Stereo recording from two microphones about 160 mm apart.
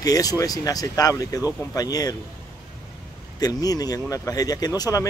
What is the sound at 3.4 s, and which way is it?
Speech, 25° left (ahead or behind).